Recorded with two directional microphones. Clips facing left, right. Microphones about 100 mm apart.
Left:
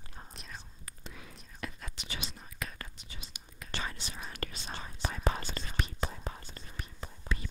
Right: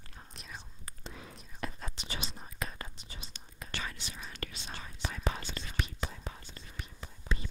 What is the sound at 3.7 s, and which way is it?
Whispering, 35° left (ahead or behind).